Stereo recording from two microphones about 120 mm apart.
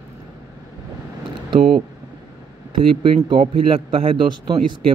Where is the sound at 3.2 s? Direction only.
45° right (ahead or behind).